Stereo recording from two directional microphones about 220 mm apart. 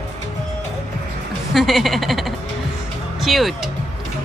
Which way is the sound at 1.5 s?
Centre (ahead or behind).